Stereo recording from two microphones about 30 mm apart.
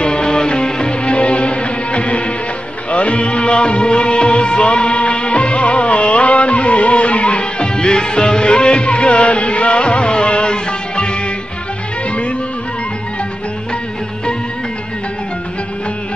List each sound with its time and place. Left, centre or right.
0.0 s music: left
1.0 s music: left